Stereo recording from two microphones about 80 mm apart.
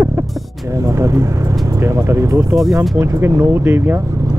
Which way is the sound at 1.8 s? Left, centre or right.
Right.